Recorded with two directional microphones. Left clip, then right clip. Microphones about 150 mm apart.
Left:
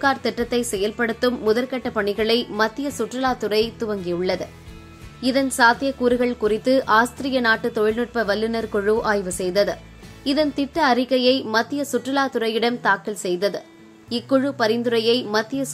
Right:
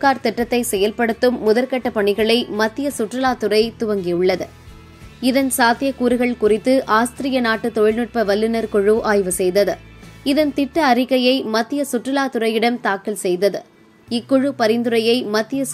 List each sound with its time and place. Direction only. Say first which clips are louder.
0.0 s a woman's voice: right 4 dB; 15° right (ahead or behind)